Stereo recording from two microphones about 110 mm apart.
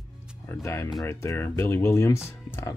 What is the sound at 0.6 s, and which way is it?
Speech, 25° left (ahead or behind).